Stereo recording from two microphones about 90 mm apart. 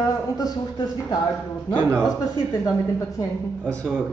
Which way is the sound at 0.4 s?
45° left (ahead or behind).